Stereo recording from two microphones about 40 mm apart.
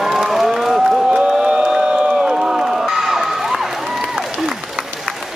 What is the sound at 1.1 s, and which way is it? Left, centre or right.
Crowd, centre.